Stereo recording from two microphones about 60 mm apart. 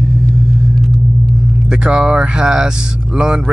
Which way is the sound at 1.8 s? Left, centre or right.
Centre.